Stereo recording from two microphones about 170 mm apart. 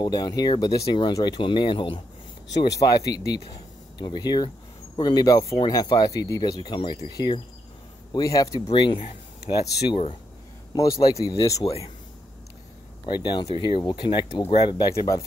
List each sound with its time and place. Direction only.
0.0 s speech: 25° left (ahead or behind)
8.6 s speech: 30° left (ahead or behind)
10.7 s speech: 20° left (ahead or behind)
13.0 s speech: 25° left (ahead or behind)